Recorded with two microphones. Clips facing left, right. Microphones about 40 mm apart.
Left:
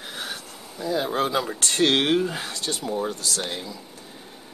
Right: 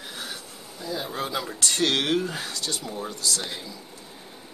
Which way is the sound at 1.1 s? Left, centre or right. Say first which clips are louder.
Left 6 dB; left.